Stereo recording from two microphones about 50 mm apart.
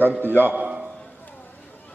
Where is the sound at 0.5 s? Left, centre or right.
Right.